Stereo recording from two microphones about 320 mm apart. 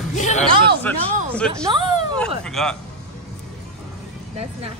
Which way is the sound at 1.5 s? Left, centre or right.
Centre.